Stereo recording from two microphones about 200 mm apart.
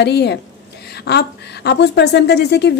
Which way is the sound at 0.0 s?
55° left (ahead or behind).